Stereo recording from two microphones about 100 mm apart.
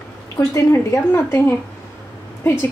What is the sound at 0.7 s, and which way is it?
A woman's voice, 25° left (ahead or behind).